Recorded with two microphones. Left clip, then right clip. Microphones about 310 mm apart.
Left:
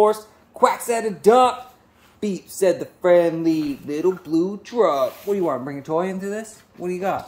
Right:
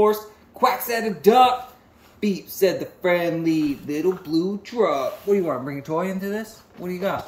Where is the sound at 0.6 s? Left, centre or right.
Centre.